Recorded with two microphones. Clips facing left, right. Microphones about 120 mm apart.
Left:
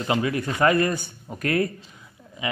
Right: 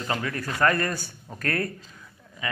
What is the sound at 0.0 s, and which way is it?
Speech, 10° left (ahead or behind).